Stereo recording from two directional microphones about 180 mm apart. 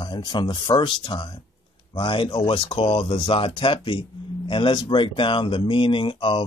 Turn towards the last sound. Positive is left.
turn(degrees=30)  # may be behind; listen again after turning